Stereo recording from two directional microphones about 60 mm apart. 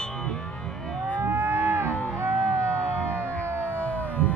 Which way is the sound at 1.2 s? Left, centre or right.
Right.